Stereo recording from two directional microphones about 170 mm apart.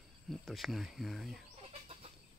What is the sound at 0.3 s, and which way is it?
Speech, centre (ahead or behind).